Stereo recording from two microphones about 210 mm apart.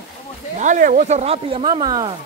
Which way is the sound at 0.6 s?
40° right (ahead or behind).